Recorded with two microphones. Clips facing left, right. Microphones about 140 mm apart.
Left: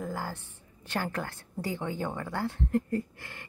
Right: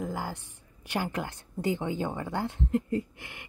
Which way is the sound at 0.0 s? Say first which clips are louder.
Right 1 dB; 15° right (ahead or behind).